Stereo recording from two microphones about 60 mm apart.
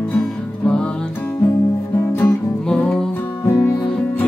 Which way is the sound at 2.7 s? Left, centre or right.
Centre.